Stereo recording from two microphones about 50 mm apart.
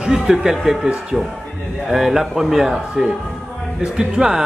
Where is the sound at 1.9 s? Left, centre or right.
Centre.